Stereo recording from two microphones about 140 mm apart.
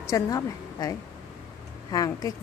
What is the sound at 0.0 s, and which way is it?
A woman's voice, 25° left (ahead or behind).